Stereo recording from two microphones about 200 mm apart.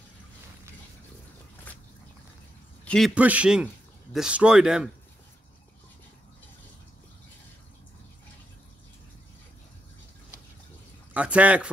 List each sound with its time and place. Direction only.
2.8 s a sound: 5° left (ahead or behind)
3.2 s speech: 5° right (ahead or behind)
11.1 s speech: 5° right (ahead or behind)